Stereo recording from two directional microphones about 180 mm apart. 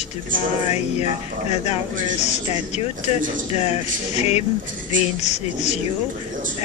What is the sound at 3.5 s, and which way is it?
A man's voice, 35° left (ahead or behind).